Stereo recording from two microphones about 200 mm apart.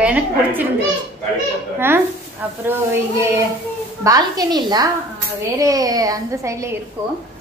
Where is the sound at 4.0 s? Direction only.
20° right (ahead or behind).